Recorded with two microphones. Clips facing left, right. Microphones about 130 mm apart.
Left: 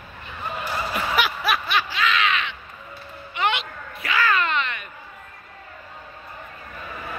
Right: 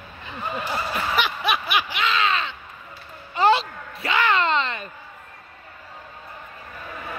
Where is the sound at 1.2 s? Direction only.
5° left (ahead or behind).